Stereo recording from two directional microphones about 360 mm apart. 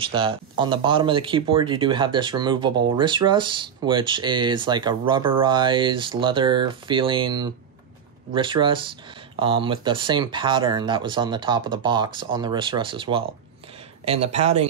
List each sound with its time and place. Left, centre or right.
0.0 s speech: centre